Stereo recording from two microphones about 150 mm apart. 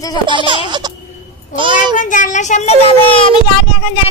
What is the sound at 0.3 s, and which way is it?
Music, 35° right (ahead or behind).